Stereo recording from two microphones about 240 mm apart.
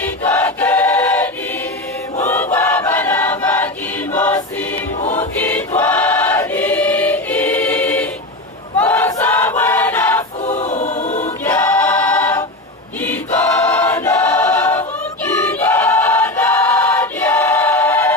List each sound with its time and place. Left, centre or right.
0.0 s choir: centre
10.4 s choir: left
11.4 s choir: centre